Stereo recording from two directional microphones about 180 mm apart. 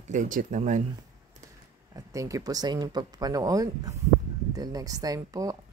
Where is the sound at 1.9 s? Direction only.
20° right (ahead or behind).